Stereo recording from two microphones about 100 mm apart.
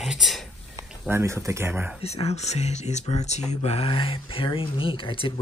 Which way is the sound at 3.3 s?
80° left.